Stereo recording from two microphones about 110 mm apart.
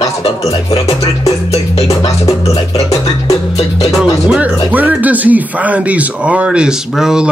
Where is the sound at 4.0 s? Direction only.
10° right (ahead or behind).